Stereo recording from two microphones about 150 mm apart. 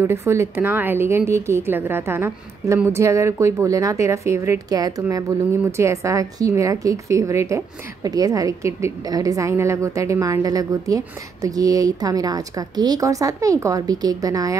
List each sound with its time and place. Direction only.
0.0 s a woman's voice: 15° right (ahead or behind)